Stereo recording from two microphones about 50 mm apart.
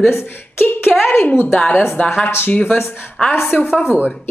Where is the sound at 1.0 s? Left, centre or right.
Left.